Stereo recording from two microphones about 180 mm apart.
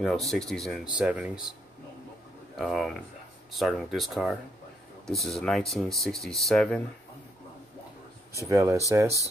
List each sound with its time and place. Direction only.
0.0 s speech: centre (ahead or behind)
2.5 s speech: centre (ahead or behind)
8.5 s speech: 15° right (ahead or behind)